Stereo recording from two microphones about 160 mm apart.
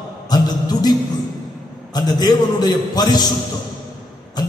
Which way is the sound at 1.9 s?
25° left (ahead or behind).